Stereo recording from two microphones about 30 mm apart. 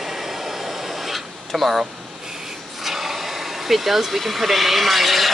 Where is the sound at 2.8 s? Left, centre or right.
Centre.